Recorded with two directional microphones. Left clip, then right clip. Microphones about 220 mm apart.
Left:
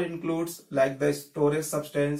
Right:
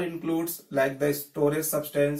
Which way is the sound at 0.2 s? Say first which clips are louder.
Right 1 dB; 10° left (ahead or behind).